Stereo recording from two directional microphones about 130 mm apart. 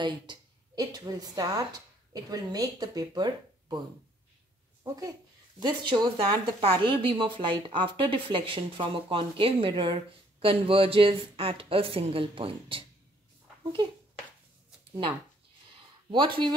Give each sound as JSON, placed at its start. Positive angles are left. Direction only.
{"t": 0.0, "sound": "a woman's voice", "side_deg": -35}
{"t": 5.6, "sound": "speech", "side_deg": -35}
{"t": 16.1, "sound": "speech", "side_deg": -35}